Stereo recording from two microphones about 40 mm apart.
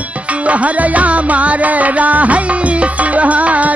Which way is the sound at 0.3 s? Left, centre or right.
Right.